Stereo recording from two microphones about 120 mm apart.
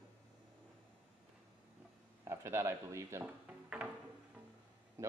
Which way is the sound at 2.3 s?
20° right (ahead or behind).